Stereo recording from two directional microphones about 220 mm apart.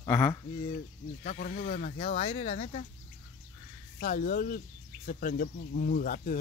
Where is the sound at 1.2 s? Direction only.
40° left (ahead or behind).